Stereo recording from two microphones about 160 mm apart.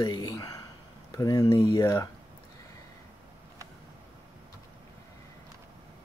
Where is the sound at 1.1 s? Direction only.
25° left (ahead or behind).